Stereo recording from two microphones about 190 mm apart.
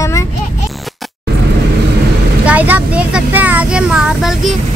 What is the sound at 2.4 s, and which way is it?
Speech, 10° right (ahead or behind).